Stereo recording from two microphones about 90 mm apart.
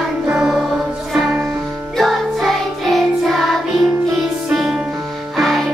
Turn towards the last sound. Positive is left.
turn(degrees=0)  # may be behind; listen again after turning